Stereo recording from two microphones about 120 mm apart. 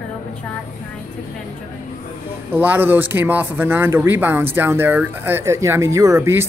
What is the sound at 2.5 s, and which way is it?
Speech, 15° right (ahead or behind).